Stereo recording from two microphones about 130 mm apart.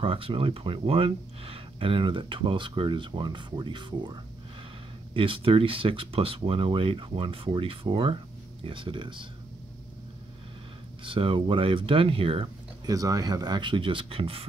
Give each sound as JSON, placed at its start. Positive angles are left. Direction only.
{"t": 0.0, "sound": "speech", "side_deg": -45}
{"t": 11.1, "sound": "speech", "side_deg": -40}
{"t": 12.8, "sound": "speech", "side_deg": -25}